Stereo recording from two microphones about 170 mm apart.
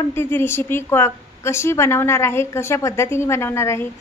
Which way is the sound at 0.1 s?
15° left (ahead or behind).